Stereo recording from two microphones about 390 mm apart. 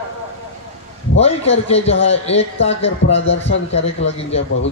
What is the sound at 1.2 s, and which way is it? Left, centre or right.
A man's voice, centre.